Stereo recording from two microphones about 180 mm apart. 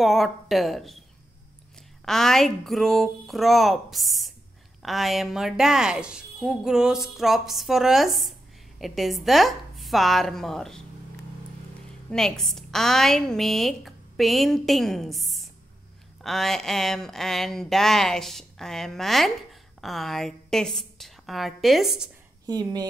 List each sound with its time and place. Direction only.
0.0 s speech: centre (ahead or behind)
2.0 s speech: centre (ahead or behind)
12.1 s a woman's voice: 5° left (ahead or behind)
22.5 s speech: 20° right (ahead or behind)